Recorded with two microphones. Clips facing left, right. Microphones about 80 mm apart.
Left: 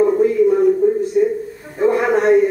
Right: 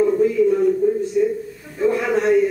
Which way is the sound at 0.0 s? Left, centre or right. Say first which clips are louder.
Left 3 dB; left.